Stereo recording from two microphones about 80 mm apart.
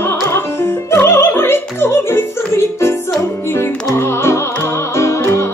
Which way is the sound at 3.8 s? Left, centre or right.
Left.